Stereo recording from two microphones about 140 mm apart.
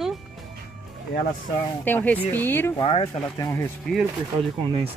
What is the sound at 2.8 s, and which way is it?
Speech, 40° left (ahead or behind).